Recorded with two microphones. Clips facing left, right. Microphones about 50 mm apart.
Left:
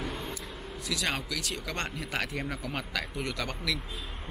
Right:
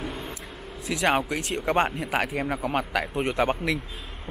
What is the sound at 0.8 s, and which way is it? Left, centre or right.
Speech, right.